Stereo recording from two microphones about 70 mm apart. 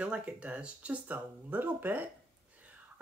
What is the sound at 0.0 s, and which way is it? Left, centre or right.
Speech, centre.